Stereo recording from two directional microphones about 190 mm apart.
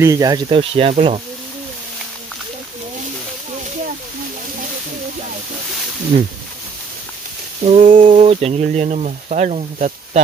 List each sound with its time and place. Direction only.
0.0 s speech: 15° right (ahead or behind)
0.5 s speech: 30° right (ahead or behind)
7.6 s speech: 40° right (ahead or behind)